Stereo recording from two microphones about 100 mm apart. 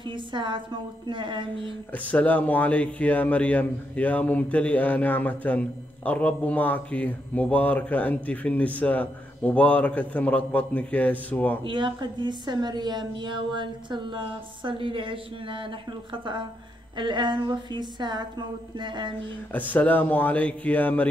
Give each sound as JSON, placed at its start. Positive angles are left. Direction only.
{"t": 0.3, "sound": "a woman's voice", "side_deg": -50}
{"t": 2.0, "sound": "a man's voice", "side_deg": 15}
{"t": 11.6, "sound": "a woman's voice", "side_deg": -55}
{"t": 19.5, "sound": "a man's voice", "side_deg": 15}